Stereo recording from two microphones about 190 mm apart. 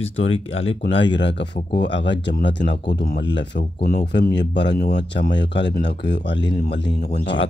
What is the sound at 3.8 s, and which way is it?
Speech, 50° left (ahead or behind).